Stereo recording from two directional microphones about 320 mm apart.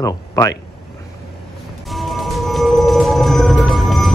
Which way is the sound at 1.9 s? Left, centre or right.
Centre.